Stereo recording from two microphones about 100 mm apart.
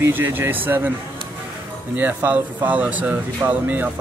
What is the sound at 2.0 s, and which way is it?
Speech, 15° right (ahead or behind).